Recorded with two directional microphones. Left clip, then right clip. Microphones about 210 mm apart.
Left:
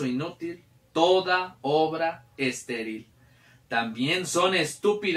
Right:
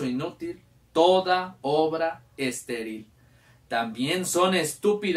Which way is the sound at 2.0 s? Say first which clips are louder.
Even; 20° right (ahead or behind).